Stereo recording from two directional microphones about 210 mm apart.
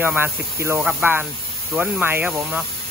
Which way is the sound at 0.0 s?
10° right (ahead or behind).